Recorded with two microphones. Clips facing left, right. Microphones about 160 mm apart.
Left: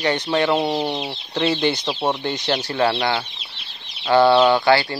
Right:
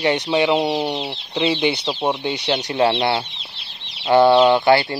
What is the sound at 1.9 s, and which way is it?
Speech, centre (ahead or behind).